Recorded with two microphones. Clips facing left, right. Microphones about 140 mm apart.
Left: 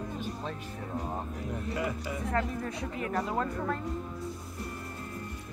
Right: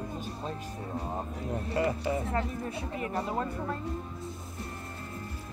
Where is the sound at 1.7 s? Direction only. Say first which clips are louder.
Right 7 dB; 30° right (ahead or behind).